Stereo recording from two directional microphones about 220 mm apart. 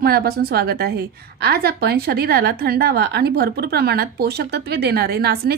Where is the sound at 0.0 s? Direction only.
45° right (ahead or behind).